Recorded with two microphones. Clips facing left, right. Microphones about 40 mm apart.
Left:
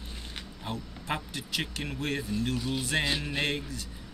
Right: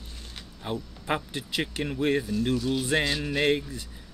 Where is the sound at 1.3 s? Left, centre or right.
Right.